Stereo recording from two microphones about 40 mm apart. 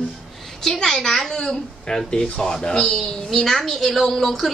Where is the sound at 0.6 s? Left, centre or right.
Centre.